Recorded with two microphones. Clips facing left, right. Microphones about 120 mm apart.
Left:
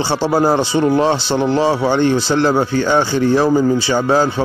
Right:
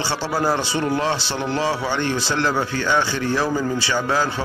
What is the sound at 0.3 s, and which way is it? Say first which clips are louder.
Speech: left 7 dB; 50° left (ahead or behind).